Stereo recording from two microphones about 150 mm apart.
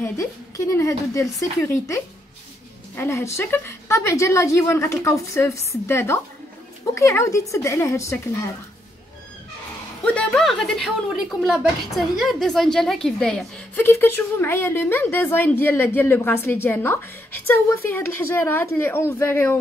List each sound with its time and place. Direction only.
0.0 s a woman's voice: 20° left (ahead or behind)
10.0 s a woman's voice: 5° left (ahead or behind)